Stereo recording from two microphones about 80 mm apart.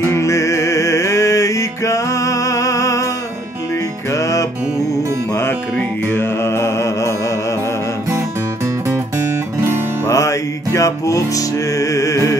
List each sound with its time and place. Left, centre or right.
0.1 s music: left
5.4 s music: left
10.0 s music: left